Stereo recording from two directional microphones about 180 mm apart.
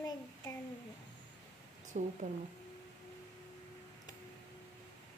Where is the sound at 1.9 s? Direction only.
40° right (ahead or behind).